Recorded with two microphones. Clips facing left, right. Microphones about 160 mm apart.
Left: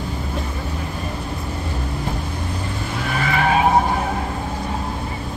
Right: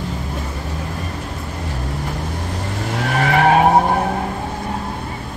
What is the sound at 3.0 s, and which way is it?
Vehicle, 75° right (ahead or behind).